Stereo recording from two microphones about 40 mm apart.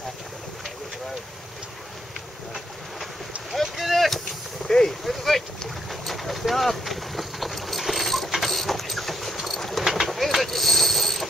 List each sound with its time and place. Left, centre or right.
3.6 s vehicle: centre
4.6 s vehicle: centre
5.0 s speech: centre
5.9 s vehicle: centre
9.8 s pulleys: centre